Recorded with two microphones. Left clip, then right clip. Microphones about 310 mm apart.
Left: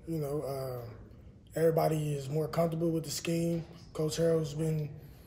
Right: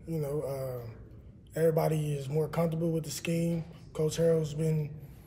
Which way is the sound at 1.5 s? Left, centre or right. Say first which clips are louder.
Even; centre.